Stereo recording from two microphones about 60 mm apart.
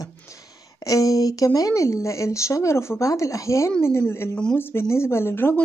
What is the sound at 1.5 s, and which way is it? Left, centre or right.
Speech, left.